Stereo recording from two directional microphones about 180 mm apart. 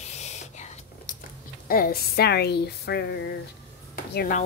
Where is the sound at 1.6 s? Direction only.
55° left (ahead or behind).